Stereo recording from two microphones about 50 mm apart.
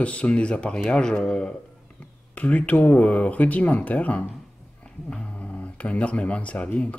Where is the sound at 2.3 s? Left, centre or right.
Left.